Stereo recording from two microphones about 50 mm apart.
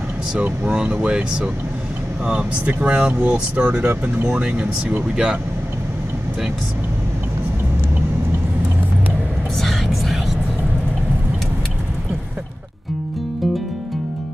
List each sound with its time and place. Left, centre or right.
0.4 s speech: right
2.2 s speech: right
5.1 s speech: centre
9.6 s vehicle: centre